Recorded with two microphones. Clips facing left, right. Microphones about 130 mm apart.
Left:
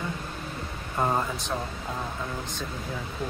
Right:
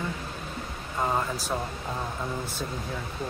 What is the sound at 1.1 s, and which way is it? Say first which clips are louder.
Speech: even; 5° right (ahead or behind).